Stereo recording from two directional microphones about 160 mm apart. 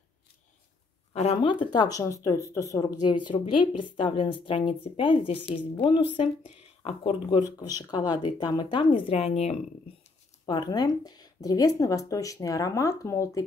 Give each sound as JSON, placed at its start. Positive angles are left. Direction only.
{"t": 1.1, "sound": "speech", "side_deg": 40}
{"t": 6.8, "sound": "speech", "side_deg": 40}
{"t": 7.2, "sound": "speech", "side_deg": 25}
{"t": 10.4, "sound": "speech", "side_deg": 25}